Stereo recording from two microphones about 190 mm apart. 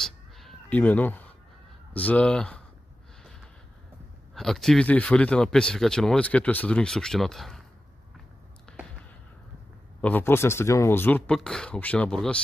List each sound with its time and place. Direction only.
0.0 s cat: centre (ahead or behind)
2.0 s speech: 5° left (ahead or behind)
4.4 s speech: centre (ahead or behind)
8.7 s a sound: 5° left (ahead or behind)
10.0 s speech: 10° left (ahead or behind)